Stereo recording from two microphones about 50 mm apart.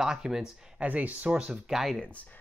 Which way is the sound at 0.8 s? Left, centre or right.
Right.